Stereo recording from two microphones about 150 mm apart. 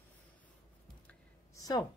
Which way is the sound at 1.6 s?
25° left (ahead or behind).